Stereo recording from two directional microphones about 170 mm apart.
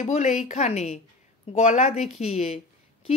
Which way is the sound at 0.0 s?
45° left (ahead or behind).